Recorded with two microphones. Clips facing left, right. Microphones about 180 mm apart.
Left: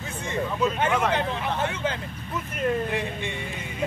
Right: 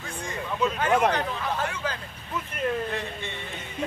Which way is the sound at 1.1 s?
20° left (ahead or behind).